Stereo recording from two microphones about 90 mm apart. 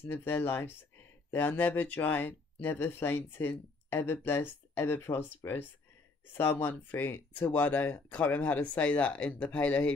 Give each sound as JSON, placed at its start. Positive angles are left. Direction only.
{"t": 0.0, "sound": "speech", "side_deg": 25}